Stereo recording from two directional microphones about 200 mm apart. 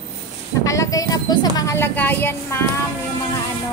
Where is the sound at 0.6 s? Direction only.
15° left (ahead or behind).